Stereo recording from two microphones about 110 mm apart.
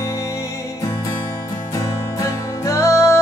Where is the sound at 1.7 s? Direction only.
30° left (ahead or behind).